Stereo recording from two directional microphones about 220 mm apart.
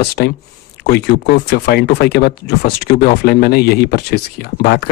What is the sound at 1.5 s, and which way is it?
Speech, 50° left (ahead or behind).